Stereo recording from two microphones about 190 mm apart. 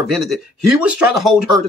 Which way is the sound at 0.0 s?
Centre (ahead or behind).